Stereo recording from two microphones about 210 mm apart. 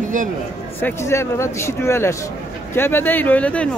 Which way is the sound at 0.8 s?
10° left (ahead or behind).